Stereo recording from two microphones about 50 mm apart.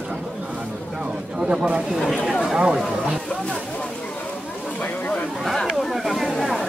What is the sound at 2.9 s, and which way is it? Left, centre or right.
Speech, centre.